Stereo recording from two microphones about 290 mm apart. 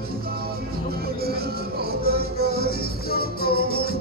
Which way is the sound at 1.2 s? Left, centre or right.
Right.